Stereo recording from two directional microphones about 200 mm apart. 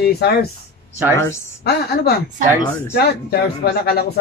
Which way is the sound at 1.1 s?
15° left (ahead or behind).